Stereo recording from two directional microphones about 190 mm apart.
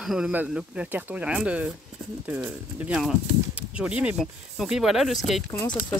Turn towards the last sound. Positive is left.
turn(degrees=10)  # may be behind; listen again after turning